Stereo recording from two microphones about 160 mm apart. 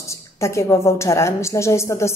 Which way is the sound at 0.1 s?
20° left (ahead or behind).